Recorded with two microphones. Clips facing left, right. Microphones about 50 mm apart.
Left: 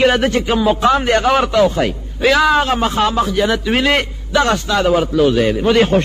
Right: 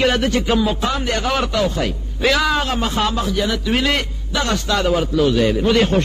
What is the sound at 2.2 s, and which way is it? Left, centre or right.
Speech, centre.